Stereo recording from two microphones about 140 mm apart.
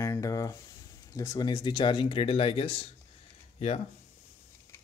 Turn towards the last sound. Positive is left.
turn(degrees=50)  # may be behind; listen again after turning